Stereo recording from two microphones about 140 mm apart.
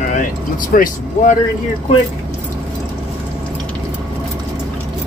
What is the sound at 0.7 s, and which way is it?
Speech, 75° left (ahead or behind).